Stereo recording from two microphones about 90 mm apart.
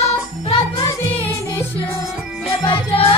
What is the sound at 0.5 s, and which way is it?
Music, 85° left.